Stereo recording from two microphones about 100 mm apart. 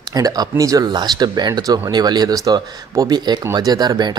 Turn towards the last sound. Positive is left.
turn(degrees=-45)  # may be behind; listen again after turning